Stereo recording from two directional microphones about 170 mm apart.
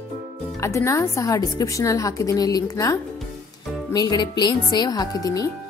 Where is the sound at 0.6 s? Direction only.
15° left (ahead or behind).